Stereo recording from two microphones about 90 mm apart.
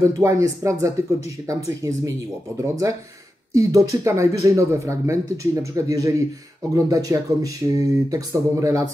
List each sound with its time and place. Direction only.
0.0 s speech: 35° right (ahead or behind)